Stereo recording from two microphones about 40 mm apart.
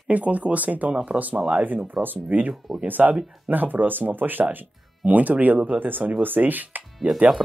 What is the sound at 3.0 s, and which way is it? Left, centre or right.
Speech, right.